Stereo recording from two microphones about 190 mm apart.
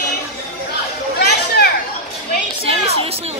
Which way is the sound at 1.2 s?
60° left (ahead or behind).